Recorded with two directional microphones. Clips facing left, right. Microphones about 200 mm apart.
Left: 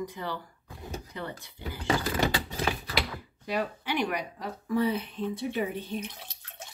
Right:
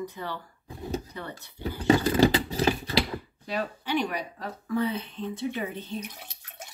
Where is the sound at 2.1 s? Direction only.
30° right (ahead or behind).